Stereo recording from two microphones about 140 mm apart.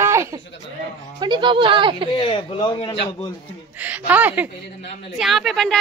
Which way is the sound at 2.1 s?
35° left (ahead or behind).